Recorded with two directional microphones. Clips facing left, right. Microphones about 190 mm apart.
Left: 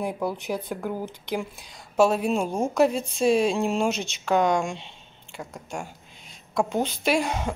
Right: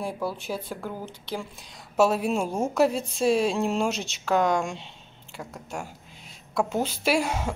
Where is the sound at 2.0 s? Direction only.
5° right (ahead or behind).